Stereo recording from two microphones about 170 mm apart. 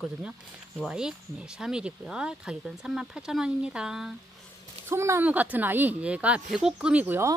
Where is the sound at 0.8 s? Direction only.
5° right (ahead or behind).